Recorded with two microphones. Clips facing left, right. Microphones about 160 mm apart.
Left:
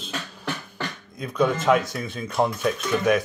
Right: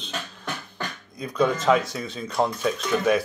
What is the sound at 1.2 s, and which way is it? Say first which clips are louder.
Speech: even; centre (ahead or behind).